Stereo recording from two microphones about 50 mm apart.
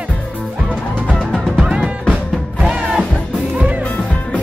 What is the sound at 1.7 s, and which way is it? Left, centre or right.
Music, centre.